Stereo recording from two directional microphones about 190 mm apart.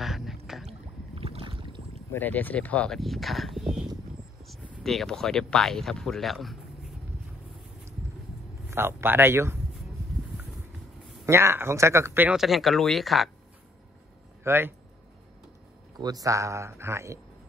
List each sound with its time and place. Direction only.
0.0 s a sound: centre (ahead or behind)
0.7 s boat: 30° right (ahead or behind)
2.1 s speech: 10° left (ahead or behind)
8.6 s speech: 10° right (ahead or behind)
11.2 s speech: 15° right (ahead or behind)
14.4 s speech: 10° right (ahead or behind)
16.0 s speech: 20° right (ahead or behind)